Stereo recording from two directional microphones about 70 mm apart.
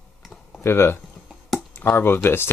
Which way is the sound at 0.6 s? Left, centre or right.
Left.